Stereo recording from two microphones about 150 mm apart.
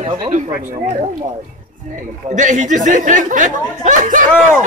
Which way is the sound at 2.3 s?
55° right (ahead or behind).